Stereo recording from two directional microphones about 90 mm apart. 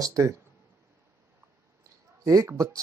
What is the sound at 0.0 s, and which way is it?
Speech, 35° right (ahead or behind).